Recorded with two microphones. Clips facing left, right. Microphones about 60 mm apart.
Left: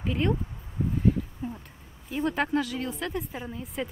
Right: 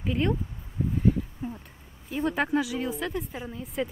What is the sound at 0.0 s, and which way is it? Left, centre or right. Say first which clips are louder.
Speech: even; centre.